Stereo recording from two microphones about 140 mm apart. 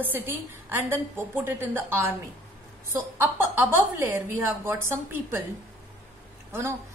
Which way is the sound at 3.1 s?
15° right (ahead or behind).